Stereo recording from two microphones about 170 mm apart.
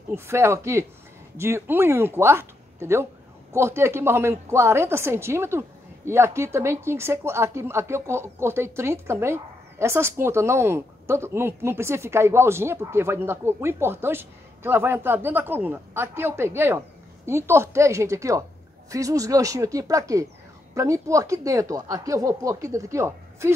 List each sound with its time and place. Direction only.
0.1 s a woman's voice: 15° right (ahead or behind)